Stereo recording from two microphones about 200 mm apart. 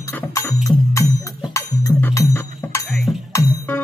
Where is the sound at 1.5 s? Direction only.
15° left (ahead or behind).